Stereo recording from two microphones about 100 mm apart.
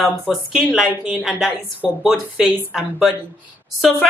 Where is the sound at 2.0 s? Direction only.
5° right (ahead or behind).